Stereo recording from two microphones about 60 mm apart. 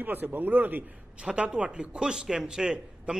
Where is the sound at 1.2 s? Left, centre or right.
Centre.